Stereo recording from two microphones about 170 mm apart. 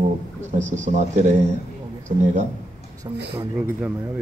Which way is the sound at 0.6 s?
45° right (ahead or behind).